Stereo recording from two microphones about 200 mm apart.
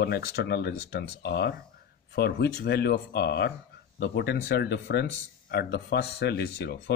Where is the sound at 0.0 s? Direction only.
50° left (ahead or behind).